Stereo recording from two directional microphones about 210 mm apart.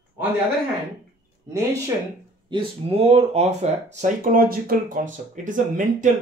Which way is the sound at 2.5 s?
30° right (ahead or behind).